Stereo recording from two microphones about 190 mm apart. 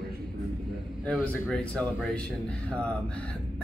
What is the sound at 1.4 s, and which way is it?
Speech, centre (ahead or behind).